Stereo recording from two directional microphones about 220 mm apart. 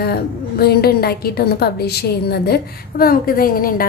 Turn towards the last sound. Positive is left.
turn(degrees=40)  # may be behind; listen again after turning